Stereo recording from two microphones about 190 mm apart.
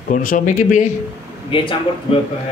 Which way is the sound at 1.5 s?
25° left (ahead or behind).